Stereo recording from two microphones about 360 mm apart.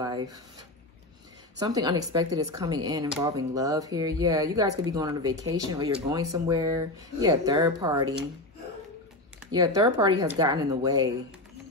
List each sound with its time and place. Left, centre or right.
0.0 s speech: centre
9.4 s speech: centre